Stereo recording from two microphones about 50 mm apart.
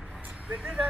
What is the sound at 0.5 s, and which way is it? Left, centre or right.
Speech, right.